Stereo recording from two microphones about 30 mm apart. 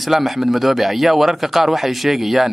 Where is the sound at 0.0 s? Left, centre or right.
Centre.